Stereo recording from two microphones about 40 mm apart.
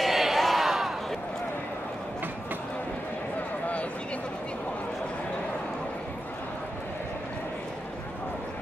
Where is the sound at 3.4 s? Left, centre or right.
Left.